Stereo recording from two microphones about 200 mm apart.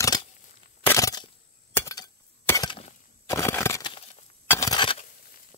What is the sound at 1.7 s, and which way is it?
Breaking, 15° left (ahead or behind).